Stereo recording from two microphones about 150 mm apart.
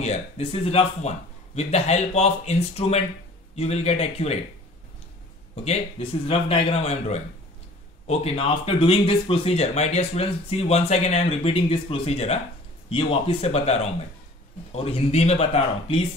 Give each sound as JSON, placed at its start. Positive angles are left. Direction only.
{"t": 0.0, "sound": "a man's voice", "side_deg": 45}
{"t": 5.6, "sound": "a man's voice", "side_deg": 45}